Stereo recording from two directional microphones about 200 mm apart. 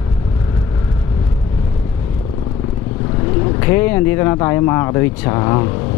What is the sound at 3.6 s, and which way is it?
Speech, 15° left (ahead or behind).